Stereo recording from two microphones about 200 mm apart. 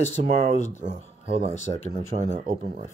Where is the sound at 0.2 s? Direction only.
40° right (ahead or behind).